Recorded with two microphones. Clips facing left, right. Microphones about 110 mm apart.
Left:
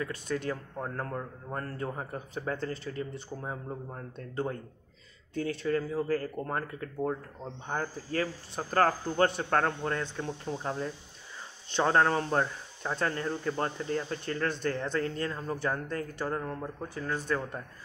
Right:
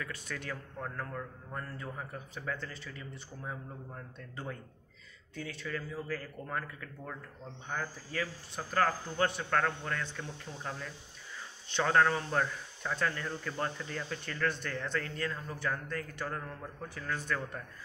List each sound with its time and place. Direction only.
0.0 s speech: 30° left (ahead or behind)
1.1 s speech: 45° left (ahead or behind)